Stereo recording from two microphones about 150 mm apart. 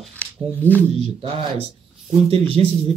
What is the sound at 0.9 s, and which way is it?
Speech, 35° right (ahead or behind).